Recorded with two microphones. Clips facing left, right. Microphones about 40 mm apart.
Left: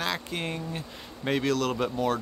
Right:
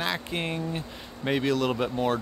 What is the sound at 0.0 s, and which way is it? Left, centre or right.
Speech, centre.